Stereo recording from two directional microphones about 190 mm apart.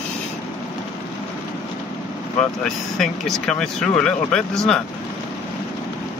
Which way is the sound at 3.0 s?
5° left (ahead or behind).